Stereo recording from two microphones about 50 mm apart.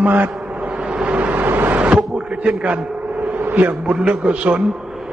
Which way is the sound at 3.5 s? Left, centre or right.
Right.